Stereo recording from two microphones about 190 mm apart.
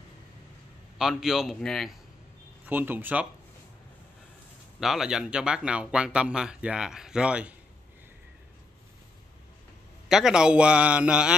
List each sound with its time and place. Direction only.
0.9 s speech: centre (ahead or behind)
2.6 s speech: 10° right (ahead or behind)
4.7 s speech: centre (ahead or behind)
10.0 s speech: centre (ahead or behind)